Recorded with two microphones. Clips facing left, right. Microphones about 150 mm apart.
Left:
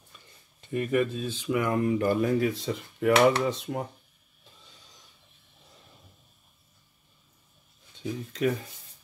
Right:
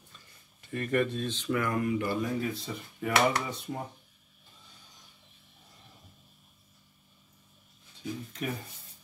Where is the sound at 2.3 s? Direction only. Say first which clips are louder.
Left 7 dB; 90° left.